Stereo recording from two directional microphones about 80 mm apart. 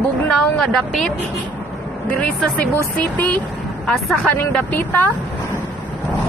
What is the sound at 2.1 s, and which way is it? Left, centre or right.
Speech, left.